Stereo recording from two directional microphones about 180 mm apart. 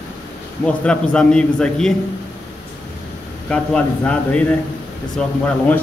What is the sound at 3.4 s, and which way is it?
Speech, 5° left (ahead or behind).